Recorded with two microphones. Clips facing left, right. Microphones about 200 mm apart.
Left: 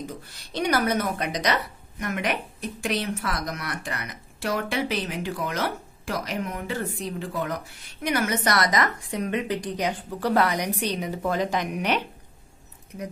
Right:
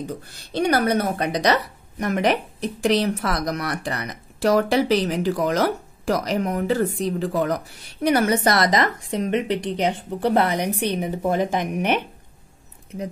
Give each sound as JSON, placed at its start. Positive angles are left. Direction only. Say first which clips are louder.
{"t": 0.0, "sound": "a woman's voice", "louder": "right 5 dB", "side_deg": -30}
{"t": 10.8, "sound": "speech", "louder": "right 4 dB", "side_deg": -55}